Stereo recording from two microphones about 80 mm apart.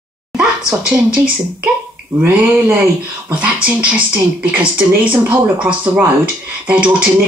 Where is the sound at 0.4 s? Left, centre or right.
Centre.